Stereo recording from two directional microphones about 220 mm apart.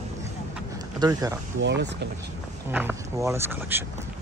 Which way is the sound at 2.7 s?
10° right (ahead or behind).